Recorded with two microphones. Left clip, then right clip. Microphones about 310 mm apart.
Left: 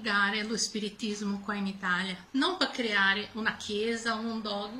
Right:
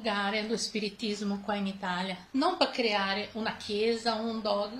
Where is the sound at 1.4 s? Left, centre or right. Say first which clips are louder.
Left 2 dB; centre.